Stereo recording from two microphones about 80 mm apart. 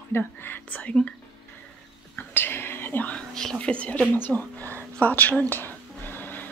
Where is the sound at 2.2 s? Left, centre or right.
Left.